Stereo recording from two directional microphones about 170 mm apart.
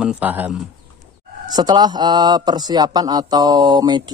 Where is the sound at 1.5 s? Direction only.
25° right (ahead or behind).